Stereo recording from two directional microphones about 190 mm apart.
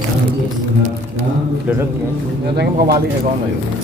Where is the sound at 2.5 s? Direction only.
55° right (ahead or behind).